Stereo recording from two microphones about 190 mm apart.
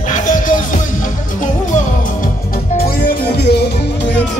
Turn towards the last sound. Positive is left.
turn(degrees=55)  # may be behind; listen again after turning